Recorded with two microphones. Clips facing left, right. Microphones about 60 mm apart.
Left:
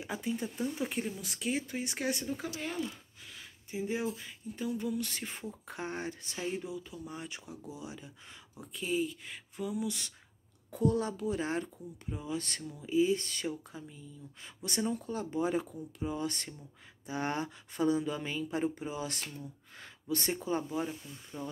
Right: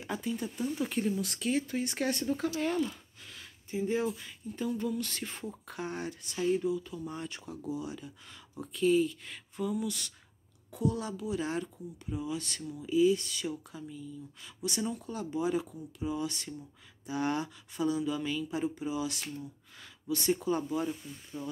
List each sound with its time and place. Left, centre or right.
0.0 s speech: centre
0.3 s speech: left
5.7 s speech: left
6.3 s speech: centre
8.5 s speech: centre
10.7 s speech: left
20.3 s speech: left